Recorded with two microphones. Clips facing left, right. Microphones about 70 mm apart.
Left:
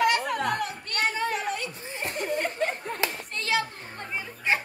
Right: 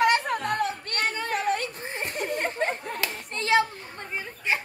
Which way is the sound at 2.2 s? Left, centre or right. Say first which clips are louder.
Even; right.